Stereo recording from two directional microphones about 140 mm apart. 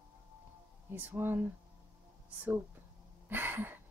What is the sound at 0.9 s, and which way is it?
Speech, 15° right (ahead or behind).